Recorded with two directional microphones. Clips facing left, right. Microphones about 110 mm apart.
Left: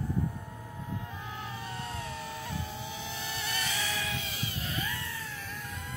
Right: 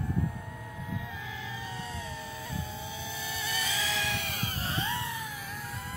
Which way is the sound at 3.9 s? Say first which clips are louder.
Right 2 dB; 85° right.